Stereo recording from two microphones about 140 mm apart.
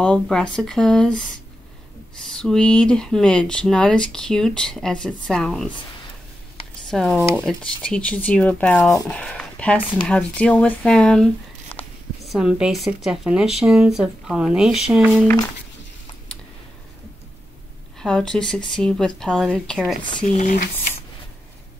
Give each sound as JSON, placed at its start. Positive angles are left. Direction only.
{"t": 0.0, "sound": "speech", "side_deg": 5}
{"t": 2.3, "sound": "speech", "side_deg": 5}
{"t": 6.9, "sound": "speech", "side_deg": 5}
{"t": 11.7, "sound": "a sound", "side_deg": 40}
{"t": 12.3, "sound": "speech", "side_deg": -5}
{"t": 17.9, "sound": "speech", "side_deg": 5}
{"t": 20.3, "sound": "speech", "side_deg": 70}